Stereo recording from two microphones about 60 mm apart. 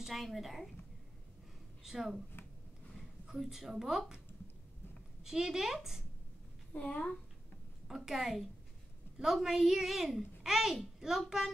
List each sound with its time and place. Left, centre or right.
0.0 s a child's voice: centre
1.8 s speech: centre
3.3 s a woman's voice: centre
5.2 s a woman's voice: centre
6.7 s a child's voice: left
7.9 s a child's voice: centre